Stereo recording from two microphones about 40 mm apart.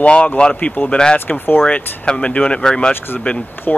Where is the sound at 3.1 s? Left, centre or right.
Left.